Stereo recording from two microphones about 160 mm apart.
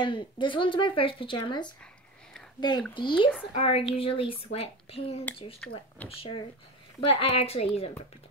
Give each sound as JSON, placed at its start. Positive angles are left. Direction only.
{"t": 0.0, "sound": "speech", "side_deg": 30}
{"t": 2.9, "sound": "speech", "side_deg": 30}
{"t": 5.6, "sound": "speech", "side_deg": 5}
{"t": 6.0, "sound": "speech", "side_deg": 35}